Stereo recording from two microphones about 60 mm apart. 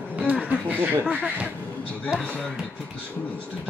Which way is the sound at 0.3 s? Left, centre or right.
Right.